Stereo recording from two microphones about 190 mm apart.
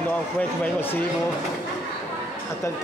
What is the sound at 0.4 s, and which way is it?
Speech, 10° left (ahead or behind).